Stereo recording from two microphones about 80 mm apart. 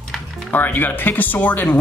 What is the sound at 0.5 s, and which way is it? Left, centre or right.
Speech, left.